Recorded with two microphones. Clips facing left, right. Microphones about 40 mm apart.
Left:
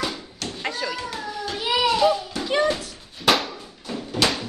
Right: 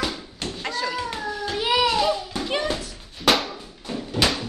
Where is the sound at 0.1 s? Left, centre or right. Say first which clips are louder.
Right 1 dB; right.